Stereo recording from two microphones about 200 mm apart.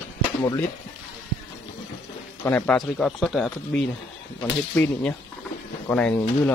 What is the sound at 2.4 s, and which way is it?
Speech, 10° left (ahead or behind).